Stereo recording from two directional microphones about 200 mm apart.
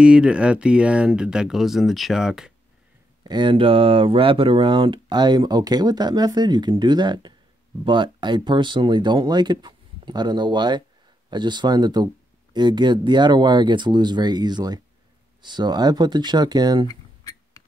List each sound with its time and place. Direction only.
0.0 s speech: 5° right (ahead or behind)
3.3 s speech: 25° right (ahead or behind)